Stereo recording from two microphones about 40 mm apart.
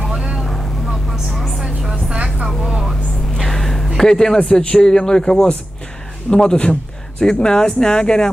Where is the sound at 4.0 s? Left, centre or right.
Centre.